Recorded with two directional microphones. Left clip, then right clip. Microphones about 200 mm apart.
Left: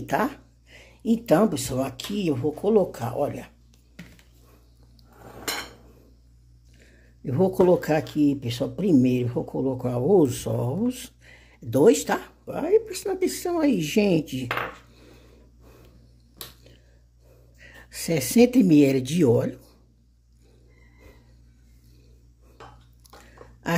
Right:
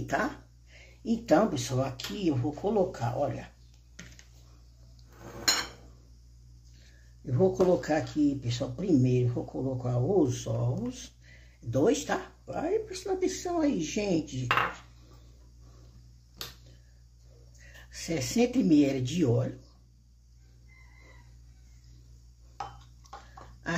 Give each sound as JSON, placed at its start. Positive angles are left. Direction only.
{"t": 0.0, "sound": "speech", "side_deg": 40}
{"t": 7.2, "sound": "speech", "side_deg": 50}
{"t": 17.6, "sound": "speech", "side_deg": 50}